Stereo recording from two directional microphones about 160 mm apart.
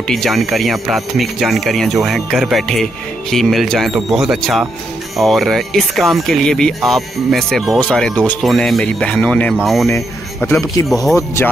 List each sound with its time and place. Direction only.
0.1 s speech: centre (ahead or behind)
9.8 s speech: 15° left (ahead or behind)